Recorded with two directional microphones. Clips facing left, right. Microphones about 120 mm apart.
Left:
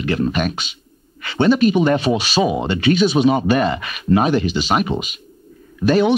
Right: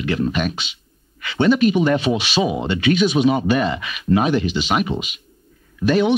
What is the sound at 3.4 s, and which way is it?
Speech, 50° left (ahead or behind).